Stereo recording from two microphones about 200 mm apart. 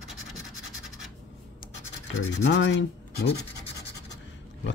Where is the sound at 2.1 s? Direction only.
70° left (ahead or behind).